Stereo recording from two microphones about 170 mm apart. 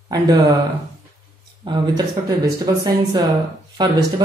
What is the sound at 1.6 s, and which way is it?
Speech, 25° right (ahead or behind).